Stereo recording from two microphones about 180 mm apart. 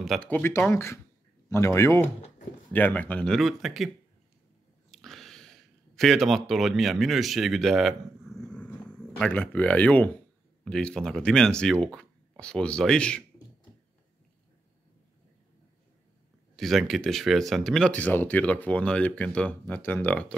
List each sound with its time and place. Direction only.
0.0 s speech: 5° left (ahead or behind)
4.9 s speech: centre (ahead or behind)
16.5 s speech: centre (ahead or behind)